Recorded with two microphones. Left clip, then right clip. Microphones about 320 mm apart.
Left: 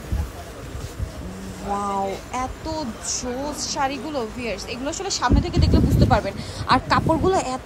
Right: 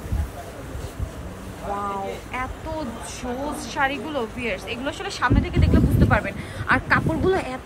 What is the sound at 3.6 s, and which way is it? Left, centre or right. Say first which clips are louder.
A woman's voice: right 1 dB; centre.